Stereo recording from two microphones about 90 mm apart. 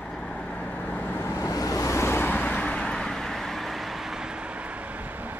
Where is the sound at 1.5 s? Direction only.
40° left (ahead or behind); by 4.3 s 5° right (ahead or behind).